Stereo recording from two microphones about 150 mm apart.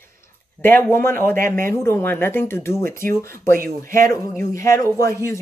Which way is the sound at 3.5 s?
65° right (ahead or behind).